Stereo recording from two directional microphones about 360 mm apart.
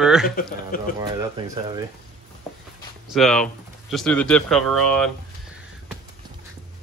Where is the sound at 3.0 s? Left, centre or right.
Centre.